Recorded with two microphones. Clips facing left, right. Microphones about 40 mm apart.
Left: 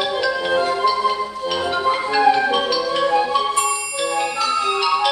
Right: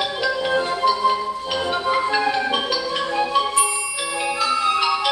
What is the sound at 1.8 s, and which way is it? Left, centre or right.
Music, centre.